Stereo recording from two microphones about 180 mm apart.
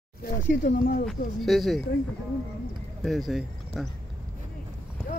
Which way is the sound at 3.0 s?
Centre (ahead or behind).